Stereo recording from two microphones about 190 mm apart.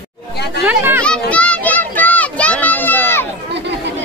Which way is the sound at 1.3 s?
5° left (ahead or behind).